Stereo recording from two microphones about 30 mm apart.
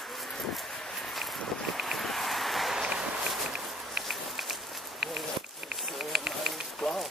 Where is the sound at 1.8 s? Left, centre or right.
Centre.